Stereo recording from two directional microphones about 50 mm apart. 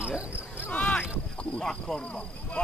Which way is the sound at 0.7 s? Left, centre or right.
Left.